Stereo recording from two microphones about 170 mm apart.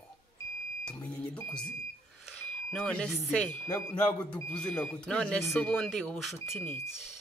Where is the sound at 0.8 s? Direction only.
5° left (ahead or behind).